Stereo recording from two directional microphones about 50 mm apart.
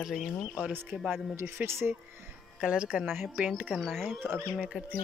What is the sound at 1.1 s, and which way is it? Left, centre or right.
Speech, right.